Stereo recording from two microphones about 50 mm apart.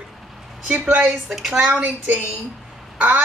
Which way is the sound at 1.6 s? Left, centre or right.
Right.